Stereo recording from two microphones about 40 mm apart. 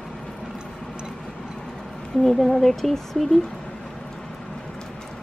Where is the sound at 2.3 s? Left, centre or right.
Centre.